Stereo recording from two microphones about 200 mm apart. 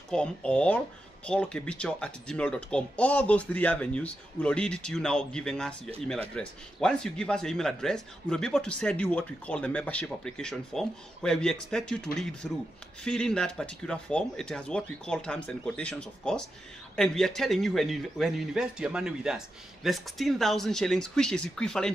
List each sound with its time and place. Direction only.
0.1 s speech: 5° left (ahead or behind)